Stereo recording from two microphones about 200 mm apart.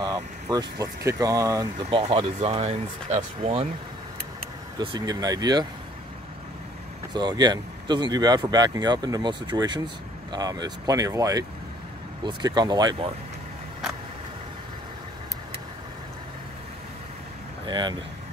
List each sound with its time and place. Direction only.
0.0 s speech: 20° right (ahead or behind)
4.7 s speech: 20° right (ahead or behind)
7.2 s speech: 20° right (ahead or behind)
17.6 s speech: 25° right (ahead or behind)